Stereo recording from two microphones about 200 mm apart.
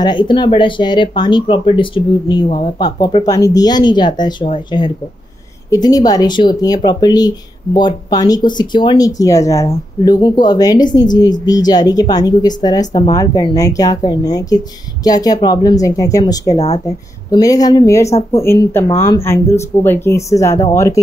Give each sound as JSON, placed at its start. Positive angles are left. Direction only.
{"t": 0.0, "sound": "speech", "side_deg": 20}